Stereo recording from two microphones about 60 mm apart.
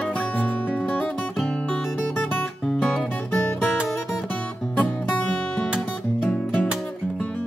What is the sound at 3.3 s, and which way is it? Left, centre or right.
Music, left.